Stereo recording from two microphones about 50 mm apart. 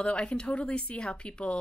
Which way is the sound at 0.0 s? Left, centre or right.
Left.